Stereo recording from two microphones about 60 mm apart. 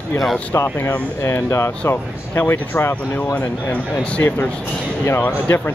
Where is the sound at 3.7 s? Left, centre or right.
Left.